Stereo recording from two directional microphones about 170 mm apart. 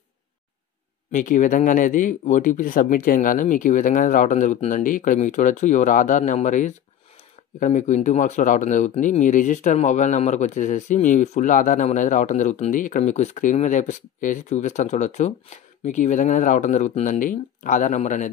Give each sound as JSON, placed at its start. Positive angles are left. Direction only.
{"t": 1.1, "sound": "speech", "side_deg": 50}